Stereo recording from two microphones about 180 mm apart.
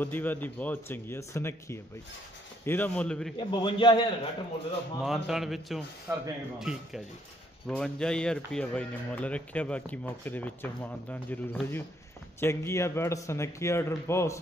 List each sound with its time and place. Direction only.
0.0 s speech: 10° left (ahead or behind)
3.3 s a man's voice: 25° left (ahead or behind)
5.0 s a man's voice: centre (ahead or behind); by 14.4 s 15° left (ahead or behind)